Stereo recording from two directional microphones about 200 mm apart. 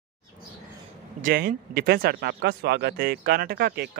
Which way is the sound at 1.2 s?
45° right (ahead or behind).